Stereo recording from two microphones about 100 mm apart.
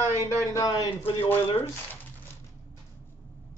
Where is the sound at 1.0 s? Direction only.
70° left (ahead or behind).